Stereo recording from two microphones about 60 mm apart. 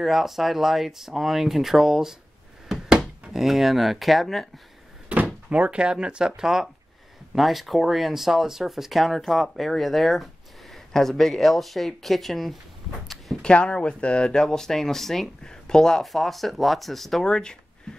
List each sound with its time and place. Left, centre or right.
0.0 s speech: centre
3.3 s speech: centre
5.1 s speech: right; by 12.5 s centre
13.4 s speech: centre
17.9 s a sound: centre